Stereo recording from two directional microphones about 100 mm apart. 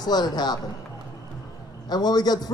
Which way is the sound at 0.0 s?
45° left (ahead or behind).